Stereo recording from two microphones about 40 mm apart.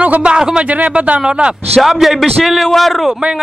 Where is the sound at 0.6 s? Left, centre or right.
Right.